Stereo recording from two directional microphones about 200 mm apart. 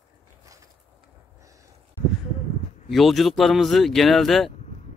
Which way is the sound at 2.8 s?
Centre (ahead or behind).